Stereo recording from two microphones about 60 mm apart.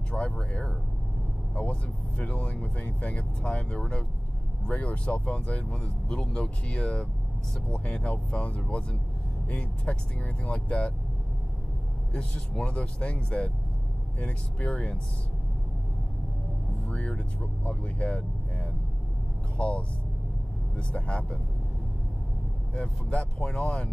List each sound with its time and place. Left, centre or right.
0.1 s speech: centre
12.1 s speech: centre
16.9 s speech: centre
22.8 s speech: centre